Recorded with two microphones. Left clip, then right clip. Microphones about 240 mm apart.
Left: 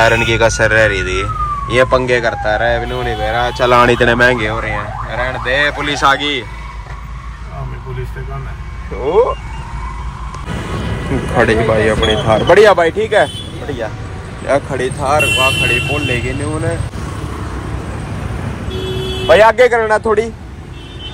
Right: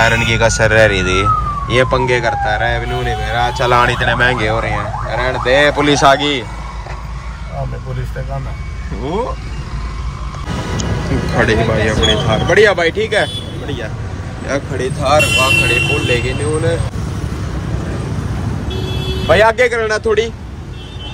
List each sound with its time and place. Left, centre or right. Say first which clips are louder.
0.0 s speech: left 2 dB; centre
11.3 s speech: left 2 dB; centre
12.4 s speech: left 3 dB; centre
14.5 s speech: left 4 dB; centre
19.2 s speech: left 3 dB; centre